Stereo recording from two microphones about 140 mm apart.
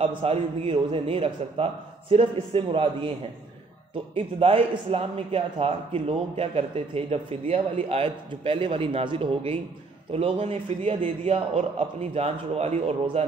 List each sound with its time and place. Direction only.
0.0 s a man's voice: 40° right (ahead or behind)
4.1 s a man's voice: 40° right (ahead or behind)